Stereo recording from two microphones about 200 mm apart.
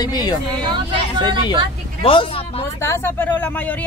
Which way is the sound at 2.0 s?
25° left (ahead or behind).